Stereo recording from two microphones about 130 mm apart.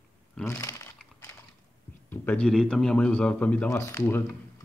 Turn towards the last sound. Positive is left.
turn(degrees=20)  # may be behind; listen again after turning